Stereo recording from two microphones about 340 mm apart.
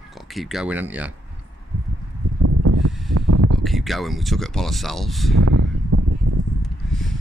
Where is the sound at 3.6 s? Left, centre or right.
Centre.